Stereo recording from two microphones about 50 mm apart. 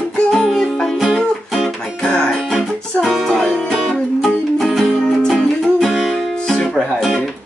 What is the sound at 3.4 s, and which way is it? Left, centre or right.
Music, centre.